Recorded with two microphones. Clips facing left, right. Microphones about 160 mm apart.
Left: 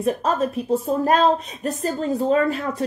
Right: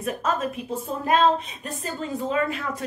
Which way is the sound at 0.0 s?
35° left (ahead or behind).